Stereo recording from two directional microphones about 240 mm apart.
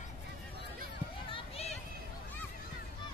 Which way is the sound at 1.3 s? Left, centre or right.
Left.